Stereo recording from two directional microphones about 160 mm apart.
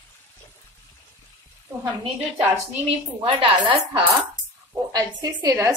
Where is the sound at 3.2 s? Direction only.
35° right (ahead or behind).